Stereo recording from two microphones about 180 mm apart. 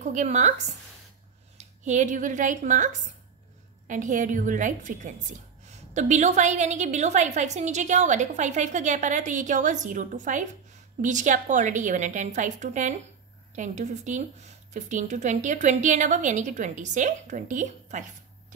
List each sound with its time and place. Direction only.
0.0 s a woman's voice: 45° right (ahead or behind)
1.6 s a woman's voice: 40° right (ahead or behind)